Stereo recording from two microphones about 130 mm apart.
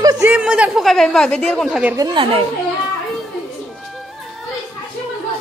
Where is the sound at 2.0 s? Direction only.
30° right (ahead or behind).